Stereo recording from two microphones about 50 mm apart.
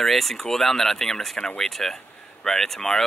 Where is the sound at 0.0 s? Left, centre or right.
Centre.